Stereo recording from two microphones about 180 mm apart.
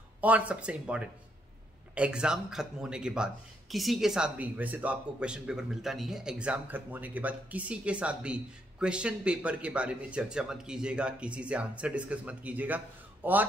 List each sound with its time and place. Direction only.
0.2 s speech: 10° right (ahead or behind)